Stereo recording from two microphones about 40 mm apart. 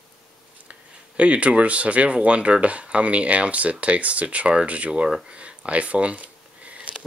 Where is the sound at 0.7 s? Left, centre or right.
Right.